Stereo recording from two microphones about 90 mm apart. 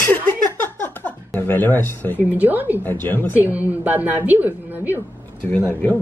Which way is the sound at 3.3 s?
20° right (ahead or behind).